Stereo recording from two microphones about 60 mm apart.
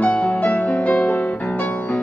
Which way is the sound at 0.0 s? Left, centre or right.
Left.